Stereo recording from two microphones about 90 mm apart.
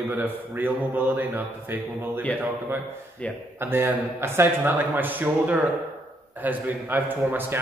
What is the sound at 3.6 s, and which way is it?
A man's voice, 25° right (ahead or behind).